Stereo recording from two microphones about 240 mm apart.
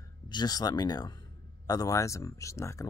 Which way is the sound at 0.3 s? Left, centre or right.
Centre.